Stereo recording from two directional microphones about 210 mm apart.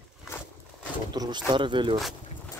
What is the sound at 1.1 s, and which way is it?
Speech, 20° right (ahead or behind).